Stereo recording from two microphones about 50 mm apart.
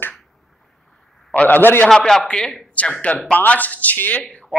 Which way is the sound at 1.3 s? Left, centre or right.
Left.